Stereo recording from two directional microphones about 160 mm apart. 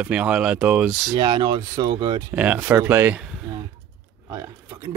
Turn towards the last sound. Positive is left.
turn(degrees=-5)  # may be behind; listen again after turning